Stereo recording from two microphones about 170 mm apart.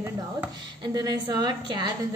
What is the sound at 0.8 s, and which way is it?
A woman's voice, 25° right (ahead or behind).